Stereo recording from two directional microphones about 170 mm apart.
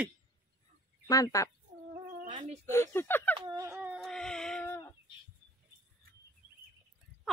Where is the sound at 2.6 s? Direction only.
15° left (ahead or behind).